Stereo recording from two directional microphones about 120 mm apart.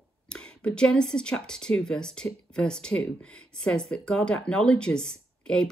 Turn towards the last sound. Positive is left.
turn(degrees=5)  # may be behind; listen again after turning